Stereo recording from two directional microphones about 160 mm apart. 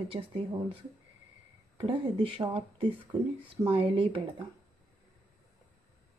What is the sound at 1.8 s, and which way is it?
Speech, 35° right (ahead or behind).